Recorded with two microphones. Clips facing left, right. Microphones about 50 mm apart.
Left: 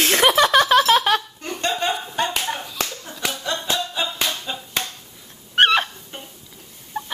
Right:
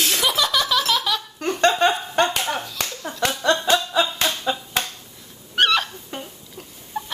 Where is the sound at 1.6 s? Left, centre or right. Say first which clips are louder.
Right 5 dB; right.